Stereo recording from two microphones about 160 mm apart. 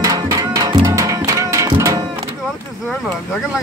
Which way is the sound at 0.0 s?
20° right (ahead or behind).